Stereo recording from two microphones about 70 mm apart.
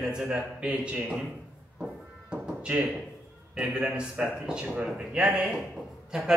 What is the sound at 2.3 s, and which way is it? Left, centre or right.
Music, centre.